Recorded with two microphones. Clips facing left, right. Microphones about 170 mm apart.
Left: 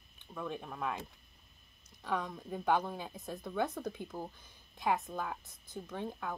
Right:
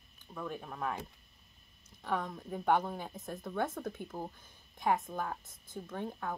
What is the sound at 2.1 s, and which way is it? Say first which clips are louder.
Speech: right 1 dB; centre (ahead or behind).